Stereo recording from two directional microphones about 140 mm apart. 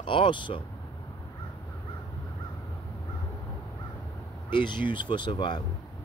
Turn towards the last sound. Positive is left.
turn(degrees=35)  # may be behind; listen again after turning